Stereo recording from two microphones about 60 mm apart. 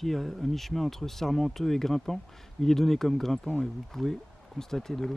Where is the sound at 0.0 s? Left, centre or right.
Centre.